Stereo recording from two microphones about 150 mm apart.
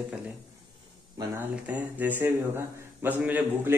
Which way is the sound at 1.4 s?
10° right (ahead or behind).